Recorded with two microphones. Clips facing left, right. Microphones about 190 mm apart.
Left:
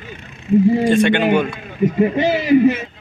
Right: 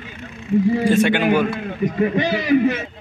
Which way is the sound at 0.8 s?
5° right (ahead or behind).